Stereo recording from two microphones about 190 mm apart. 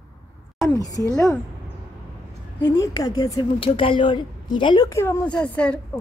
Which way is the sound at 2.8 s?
20° left (ahead or behind).